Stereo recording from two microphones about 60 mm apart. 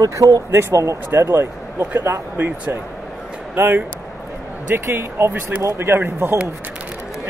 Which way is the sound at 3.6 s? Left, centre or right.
Right.